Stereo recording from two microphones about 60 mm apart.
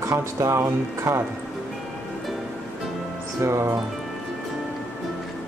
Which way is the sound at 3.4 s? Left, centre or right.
Right.